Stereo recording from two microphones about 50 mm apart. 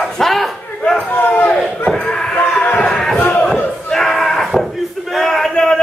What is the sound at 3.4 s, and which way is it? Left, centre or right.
Crowd, centre.